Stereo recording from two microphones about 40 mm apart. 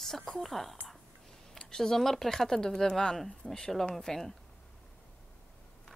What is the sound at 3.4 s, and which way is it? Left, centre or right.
Speech, left.